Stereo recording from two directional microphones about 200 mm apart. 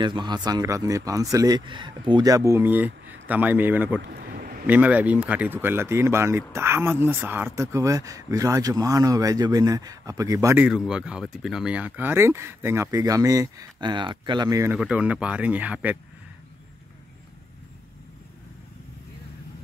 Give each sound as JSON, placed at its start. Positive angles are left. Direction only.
{"t": 0.0, "sound": "speech", "side_deg": -25}
{"t": 4.0, "sound": "vehicle", "side_deg": -50}
{"t": 4.6, "sound": "speech", "side_deg": -10}
{"t": 14.8, "sound": "speech", "side_deg": -5}